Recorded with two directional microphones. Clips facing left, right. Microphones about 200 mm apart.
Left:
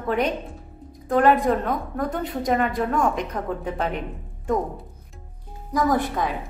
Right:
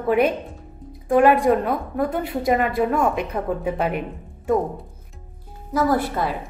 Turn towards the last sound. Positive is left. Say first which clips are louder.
# right 1 dB
turn(degrees=-5)  # may be behind; listen again after turning